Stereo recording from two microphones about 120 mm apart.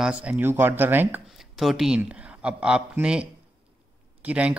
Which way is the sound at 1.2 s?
5° right (ahead or behind).